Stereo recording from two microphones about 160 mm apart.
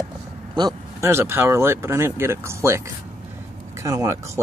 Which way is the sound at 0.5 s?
20° right (ahead or behind).